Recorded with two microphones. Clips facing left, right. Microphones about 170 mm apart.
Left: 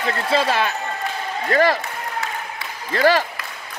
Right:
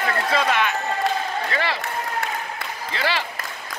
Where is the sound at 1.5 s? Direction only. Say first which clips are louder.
Left 14 dB; 45° left (ahead or behind).